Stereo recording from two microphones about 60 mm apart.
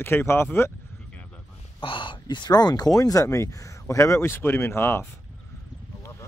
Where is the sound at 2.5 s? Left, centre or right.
Left.